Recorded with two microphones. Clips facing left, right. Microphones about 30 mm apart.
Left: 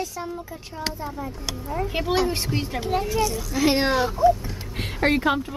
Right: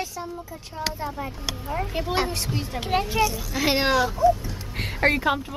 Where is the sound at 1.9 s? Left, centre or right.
Left.